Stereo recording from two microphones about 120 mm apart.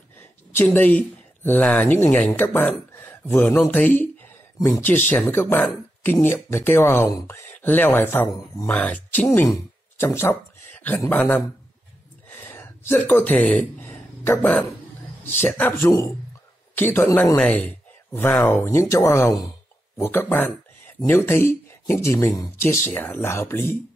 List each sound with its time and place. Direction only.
0.5 s speech: 15° left (ahead or behind)
9.9 s a sound: 20° left (ahead or behind)
11.1 s speech: 15° left (ahead or behind)
12.3 s a sound: 15° left (ahead or behind)
15.4 s speech: 15° left (ahead or behind)
15.8 s speech: 25° left (ahead or behind)
17.4 s speech: 5° left (ahead or behind)
18.5 s speech: 20° left (ahead or behind)
20.0 s speech: 15° left (ahead or behind)